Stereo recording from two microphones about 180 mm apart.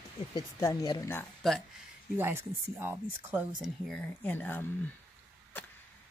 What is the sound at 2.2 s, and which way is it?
Speech, 15° right (ahead or behind).